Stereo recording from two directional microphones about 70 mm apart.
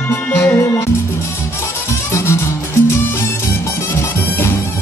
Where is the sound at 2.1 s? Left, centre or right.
Left.